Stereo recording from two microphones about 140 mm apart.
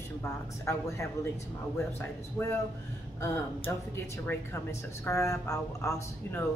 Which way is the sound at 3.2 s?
20° left (ahead or behind).